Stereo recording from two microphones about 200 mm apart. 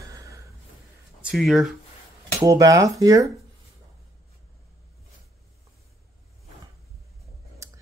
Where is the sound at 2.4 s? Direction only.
15° right (ahead or behind).